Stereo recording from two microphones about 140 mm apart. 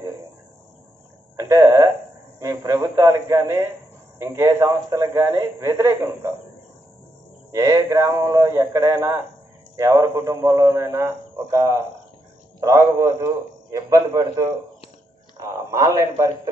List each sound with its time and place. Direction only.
1.3 s a sound: 20° right (ahead or behind)
2.3 s a man's voice: 25° right (ahead or behind)
7.5 s a man's voice: 25° right (ahead or behind)